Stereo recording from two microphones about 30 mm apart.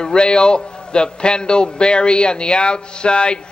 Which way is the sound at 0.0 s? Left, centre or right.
Left.